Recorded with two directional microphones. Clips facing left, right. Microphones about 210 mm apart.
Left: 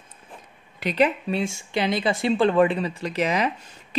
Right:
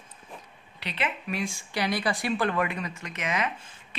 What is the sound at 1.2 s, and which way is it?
Speech, 25° left (ahead or behind).